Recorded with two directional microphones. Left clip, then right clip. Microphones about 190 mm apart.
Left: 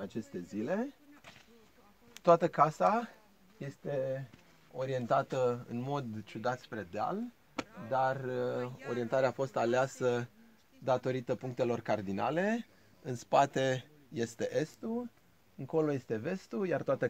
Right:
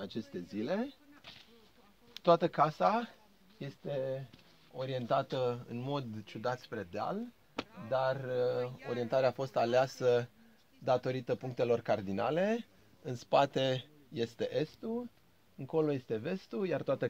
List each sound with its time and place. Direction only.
0.0 s speech: 5° left (ahead or behind)
2.2 s speech: 5° left (ahead or behind)
4.7 s speech: 5° left (ahead or behind)
5.4 s speech: 15° right (ahead or behind); by 7.2 s 40° right (ahead or behind)
7.9 s mantra: 55° right (ahead or behind)
8.9 s speech: 55° right (ahead or behind); by 13.1 s 30° right (ahead or behind)
13.1 s speech: 15° right (ahead or behind); by 17.1 s centre (ahead or behind)